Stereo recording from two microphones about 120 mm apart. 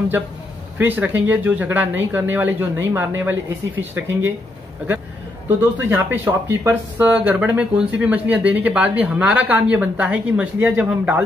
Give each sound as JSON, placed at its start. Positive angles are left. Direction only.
{"t": 0.7, "sound": "speech", "side_deg": -15}
{"t": 5.6, "sound": "speech", "side_deg": -15}